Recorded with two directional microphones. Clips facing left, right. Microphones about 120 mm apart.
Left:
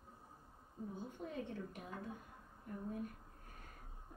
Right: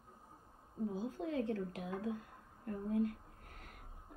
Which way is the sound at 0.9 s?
90° right.